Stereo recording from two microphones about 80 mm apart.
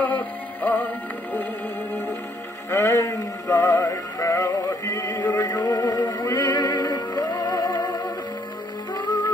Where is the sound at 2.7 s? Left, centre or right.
Left.